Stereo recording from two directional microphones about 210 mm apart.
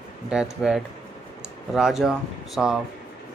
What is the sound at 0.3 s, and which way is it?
Speech, 5° right (ahead or behind).